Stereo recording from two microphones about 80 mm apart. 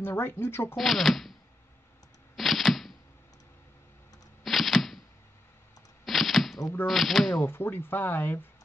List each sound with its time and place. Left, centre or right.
0.0 s speech: left
0.7 s speech: centre
2.3 s a sound: centre
4.4 s a sound: centre
6.0 s chopping: centre
6.9 s speech: centre
7.3 s speech: left